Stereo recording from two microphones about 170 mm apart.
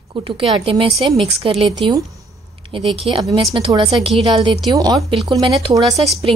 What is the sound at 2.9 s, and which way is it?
A woman's voice, 35° right (ahead or behind).